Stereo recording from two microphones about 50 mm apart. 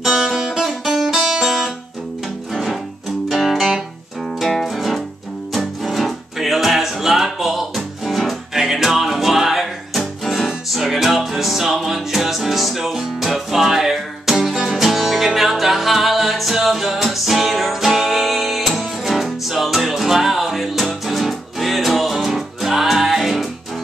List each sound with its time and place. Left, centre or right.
0.0 s music: centre